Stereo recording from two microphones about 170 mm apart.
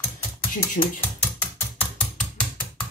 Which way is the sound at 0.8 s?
50° left (ahead or behind).